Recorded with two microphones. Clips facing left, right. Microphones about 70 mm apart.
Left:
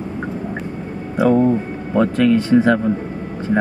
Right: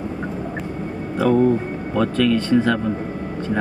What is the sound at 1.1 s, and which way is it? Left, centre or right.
Speech, centre.